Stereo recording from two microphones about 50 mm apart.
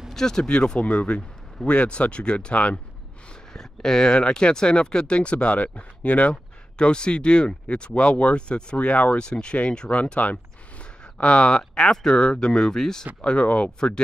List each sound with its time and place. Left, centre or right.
0.1 s speech: centre
0.8 s speech: left
3.5 s speech: centre